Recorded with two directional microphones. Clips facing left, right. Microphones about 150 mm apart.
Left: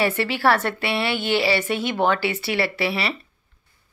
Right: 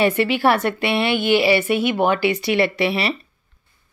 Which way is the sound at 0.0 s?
15° right (ahead or behind).